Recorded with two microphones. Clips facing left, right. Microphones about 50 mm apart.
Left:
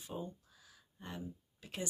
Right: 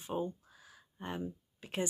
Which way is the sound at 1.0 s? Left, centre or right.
Right.